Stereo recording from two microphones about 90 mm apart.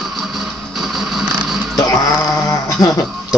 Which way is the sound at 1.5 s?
Centre (ahead or behind).